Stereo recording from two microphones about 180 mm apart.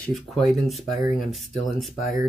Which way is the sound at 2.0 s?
45° left (ahead or behind).